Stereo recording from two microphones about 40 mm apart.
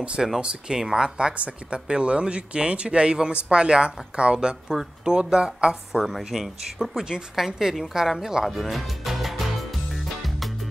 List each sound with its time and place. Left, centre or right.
0.4 s speech: right
1.3 s speech: right
4.6 s speech: centre
6.0 s speech: centre
8.5 s music: centre